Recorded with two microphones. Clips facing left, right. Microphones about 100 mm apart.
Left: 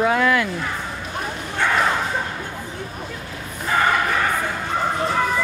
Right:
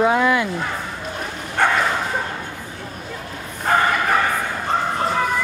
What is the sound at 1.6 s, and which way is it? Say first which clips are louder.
Bow-wow: right 3 dB; 50° right (ahead or behind).